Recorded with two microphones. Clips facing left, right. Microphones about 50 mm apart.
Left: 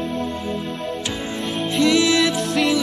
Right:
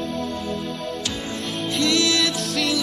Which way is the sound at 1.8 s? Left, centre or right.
Centre.